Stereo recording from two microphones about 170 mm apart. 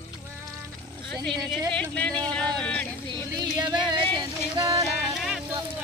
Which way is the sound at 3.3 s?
25° right (ahead or behind).